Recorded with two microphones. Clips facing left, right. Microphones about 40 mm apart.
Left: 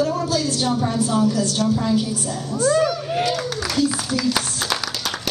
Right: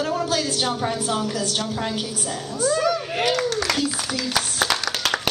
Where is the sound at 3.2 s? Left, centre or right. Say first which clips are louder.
Right 1 dB; right.